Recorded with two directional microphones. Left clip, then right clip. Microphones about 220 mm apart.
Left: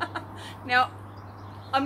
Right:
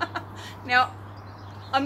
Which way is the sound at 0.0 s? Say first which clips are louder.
Right 2 dB; 10° right (ahead or behind).